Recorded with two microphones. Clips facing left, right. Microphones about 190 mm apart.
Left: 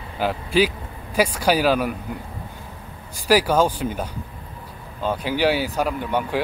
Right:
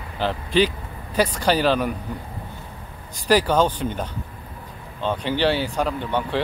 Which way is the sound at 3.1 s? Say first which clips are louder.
Left 1 dB; 10° left (ahead or behind).